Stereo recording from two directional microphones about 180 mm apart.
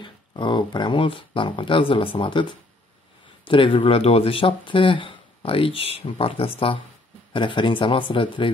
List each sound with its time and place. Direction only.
0.0 s speech: 25° left (ahead or behind)
3.4 s speech: 30° left (ahead or behind)